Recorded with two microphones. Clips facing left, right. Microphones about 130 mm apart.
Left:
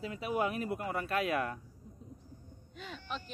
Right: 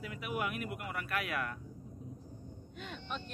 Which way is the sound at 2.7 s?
Centre (ahead or behind).